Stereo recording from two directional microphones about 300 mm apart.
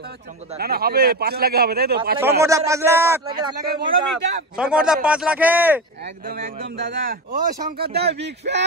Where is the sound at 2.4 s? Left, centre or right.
Centre.